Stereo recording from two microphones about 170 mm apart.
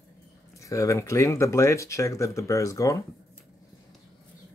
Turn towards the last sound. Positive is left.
turn(degrees=20)  # may be behind; listen again after turning